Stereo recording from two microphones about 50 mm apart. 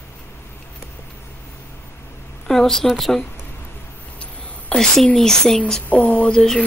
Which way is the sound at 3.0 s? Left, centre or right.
Centre.